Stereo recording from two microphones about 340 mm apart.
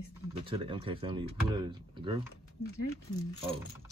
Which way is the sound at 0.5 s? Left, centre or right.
Centre.